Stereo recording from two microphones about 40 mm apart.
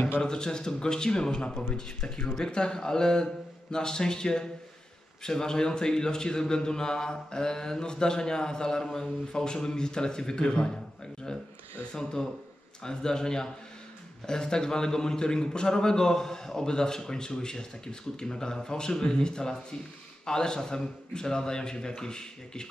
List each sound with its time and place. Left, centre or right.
0.2 s a man's voice: centre